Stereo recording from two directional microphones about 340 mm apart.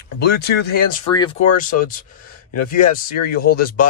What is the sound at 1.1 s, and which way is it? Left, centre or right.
Speech, centre.